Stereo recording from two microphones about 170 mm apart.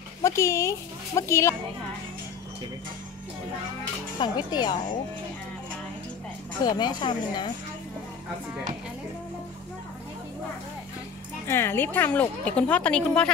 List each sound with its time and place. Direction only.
0.2 s speech: 15° left (ahead or behind)
4.2 s a woman's voice: 25° left (ahead or behind)
6.6 s a woman's voice: 25° left (ahead or behind)
11.4 s a woman's voice: 15° left (ahead or behind)